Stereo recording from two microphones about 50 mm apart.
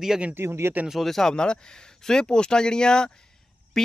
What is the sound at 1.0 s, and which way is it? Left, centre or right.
Speech, centre.